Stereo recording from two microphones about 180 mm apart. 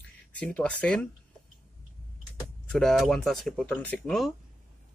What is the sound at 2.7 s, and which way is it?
Speech, 5° left (ahead or behind).